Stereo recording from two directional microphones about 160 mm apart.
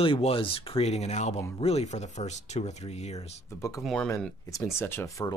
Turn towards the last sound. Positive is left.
turn(degrees=20)  # may be behind; listen again after turning